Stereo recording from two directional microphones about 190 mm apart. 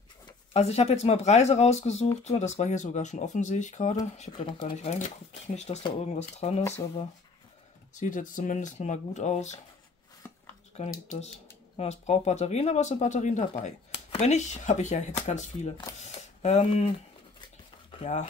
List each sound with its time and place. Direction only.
0.5 s speech: 35° left (ahead or behind)
4.3 s speech: 25° left (ahead or behind)
5.5 s speech: 35° left (ahead or behind)
7.9 s speech: 40° left (ahead or behind)
10.8 s speech: 40° left (ahead or behind)
17.9 s speech: 35° left (ahead or behind)